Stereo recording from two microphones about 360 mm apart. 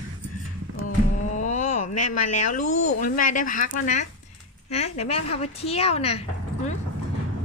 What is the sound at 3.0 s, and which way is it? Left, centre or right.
A woman's voice, left.